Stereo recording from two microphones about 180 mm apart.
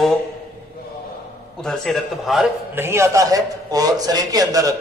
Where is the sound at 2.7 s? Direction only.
15° right (ahead or behind).